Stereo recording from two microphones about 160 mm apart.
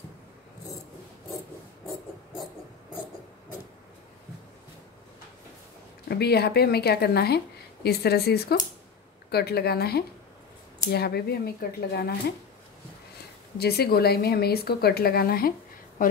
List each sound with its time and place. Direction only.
6.0 s speech: 90° left
13.6 s speech: 80° left